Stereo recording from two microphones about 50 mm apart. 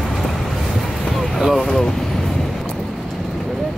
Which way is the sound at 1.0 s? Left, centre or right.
Centre.